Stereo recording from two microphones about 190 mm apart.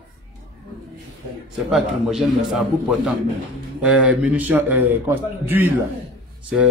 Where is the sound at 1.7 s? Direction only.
Centre (ahead or behind).